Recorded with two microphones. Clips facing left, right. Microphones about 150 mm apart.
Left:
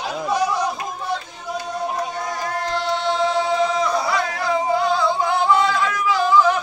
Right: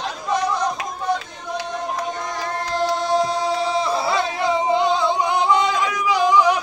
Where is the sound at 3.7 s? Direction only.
30° right (ahead or behind).